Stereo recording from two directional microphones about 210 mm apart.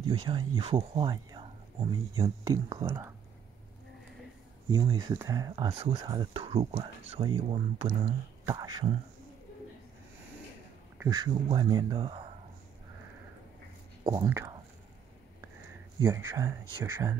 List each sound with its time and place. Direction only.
0.0 s speech: 25° right (ahead or behind)
4.6 s speech: 20° right (ahead or behind)
11.0 s speech: 20° right (ahead or behind)
14.0 s speech: 15° right (ahead or behind)
16.0 s speech: 10° right (ahead or behind)